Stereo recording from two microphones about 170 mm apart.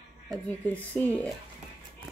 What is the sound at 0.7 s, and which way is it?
Speech, 10° left (ahead or behind).